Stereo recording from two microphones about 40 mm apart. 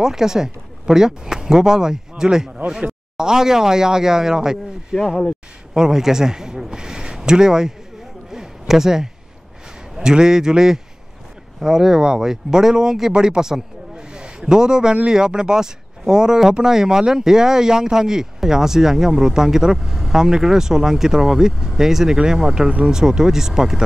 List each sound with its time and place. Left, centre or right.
0.0 s a man's voice: centre
8.3 s a sound: centre
9.9 s speech: centre